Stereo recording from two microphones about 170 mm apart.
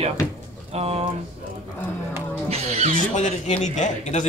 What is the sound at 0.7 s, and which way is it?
Speech, 35° right (ahead or behind).